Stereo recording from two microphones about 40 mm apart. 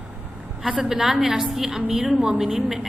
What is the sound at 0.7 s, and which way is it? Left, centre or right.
A woman's voice, centre.